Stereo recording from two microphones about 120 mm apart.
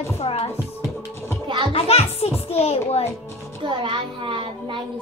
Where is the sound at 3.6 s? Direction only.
45° right (ahead or behind).